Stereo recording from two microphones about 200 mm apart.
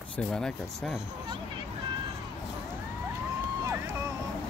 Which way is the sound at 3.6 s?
15° right (ahead or behind).